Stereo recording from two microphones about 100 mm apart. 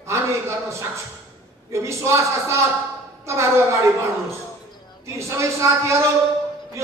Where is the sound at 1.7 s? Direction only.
30° right (ahead or behind).